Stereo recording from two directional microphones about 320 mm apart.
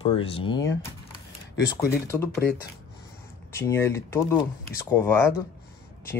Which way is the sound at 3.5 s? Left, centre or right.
Centre.